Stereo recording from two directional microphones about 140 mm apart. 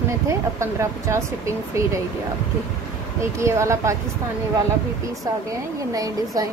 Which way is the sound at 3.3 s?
20° right (ahead or behind).